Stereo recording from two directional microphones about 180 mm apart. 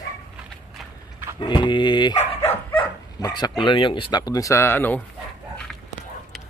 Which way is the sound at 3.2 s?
25° left (ahead or behind).